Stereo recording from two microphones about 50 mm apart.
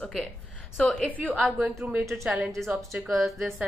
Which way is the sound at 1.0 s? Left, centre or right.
Left.